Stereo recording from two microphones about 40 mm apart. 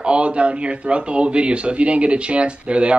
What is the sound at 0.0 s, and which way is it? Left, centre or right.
Speech, right.